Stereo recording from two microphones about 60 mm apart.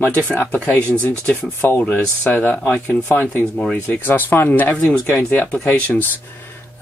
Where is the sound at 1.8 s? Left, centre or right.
Left.